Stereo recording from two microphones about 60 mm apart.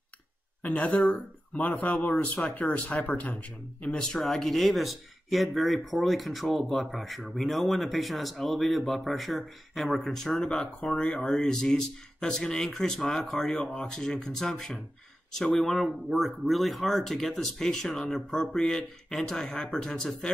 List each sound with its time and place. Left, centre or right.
0.6 s speech: left
4.2 s speech: centre
13.6 s speech: centre